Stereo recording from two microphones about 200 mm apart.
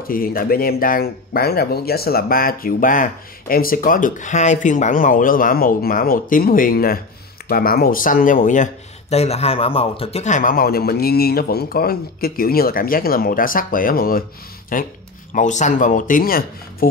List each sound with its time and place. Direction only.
0.1 s speech: 45° left (ahead or behind)